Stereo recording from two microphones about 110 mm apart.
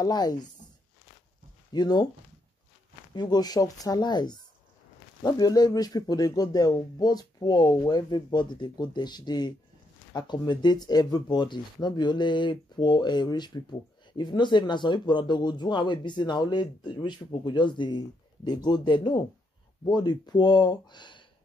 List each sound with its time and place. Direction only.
0.0 s speech: 40° left (ahead or behind)
1.7 s speech: 40° left (ahead or behind)
3.2 s speech: 40° left (ahead or behind)